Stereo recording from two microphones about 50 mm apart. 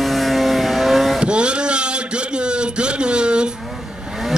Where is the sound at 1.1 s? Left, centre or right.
Centre.